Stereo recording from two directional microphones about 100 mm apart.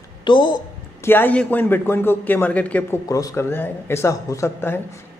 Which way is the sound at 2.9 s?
35° left (ahead or behind).